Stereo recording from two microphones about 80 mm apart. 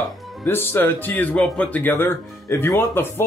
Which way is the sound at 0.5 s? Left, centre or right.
Left.